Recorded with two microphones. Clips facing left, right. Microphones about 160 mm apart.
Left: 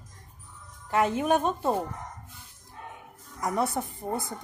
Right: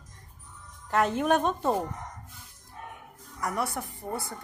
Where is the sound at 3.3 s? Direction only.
20° left (ahead or behind).